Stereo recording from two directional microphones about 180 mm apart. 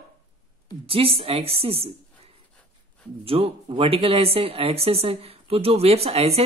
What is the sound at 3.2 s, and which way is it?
Speech, 30° right (ahead or behind).